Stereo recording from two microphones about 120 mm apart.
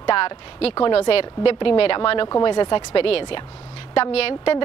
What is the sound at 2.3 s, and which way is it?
A woman's voice, 40° left (ahead or behind).